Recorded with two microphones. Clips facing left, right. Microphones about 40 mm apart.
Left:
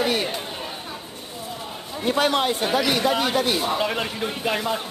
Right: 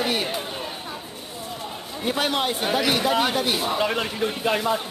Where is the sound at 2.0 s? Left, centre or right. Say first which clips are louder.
Left 3 dB; centre.